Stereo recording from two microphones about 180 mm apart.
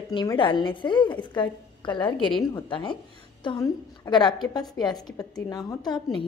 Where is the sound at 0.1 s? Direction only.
25° left (ahead or behind).